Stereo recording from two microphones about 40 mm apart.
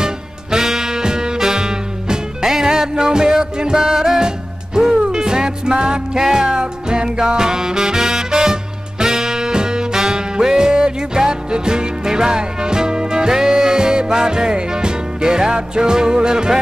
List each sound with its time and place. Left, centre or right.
0.0 s music: centre